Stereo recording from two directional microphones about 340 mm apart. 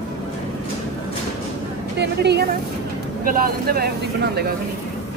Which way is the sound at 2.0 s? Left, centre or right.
Right.